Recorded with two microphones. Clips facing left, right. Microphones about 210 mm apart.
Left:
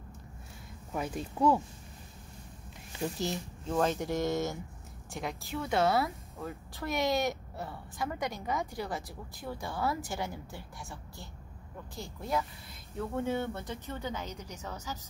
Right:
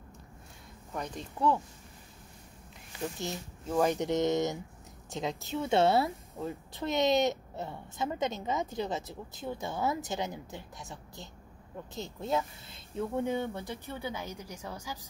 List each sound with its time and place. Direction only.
0.9 s speech: 5° left (ahead or behind)
3.2 s speech: centre (ahead or behind)
3.9 s a woman's voice: 20° right (ahead or behind)